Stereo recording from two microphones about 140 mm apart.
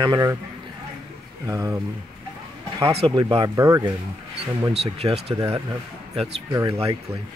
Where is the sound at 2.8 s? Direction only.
40° right (ahead or behind); by 3.9 s 25° right (ahead or behind).